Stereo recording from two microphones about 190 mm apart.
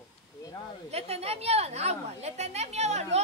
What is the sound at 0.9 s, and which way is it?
A woman's voice, 35° right (ahead or behind).